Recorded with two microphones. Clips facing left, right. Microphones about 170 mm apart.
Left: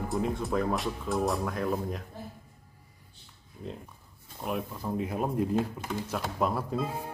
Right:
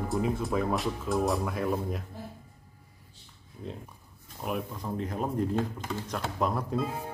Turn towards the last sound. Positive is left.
turn(degrees=0)  # may be behind; listen again after turning